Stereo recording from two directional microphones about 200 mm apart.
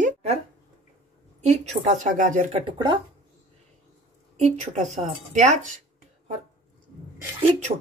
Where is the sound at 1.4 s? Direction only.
35° right (ahead or behind).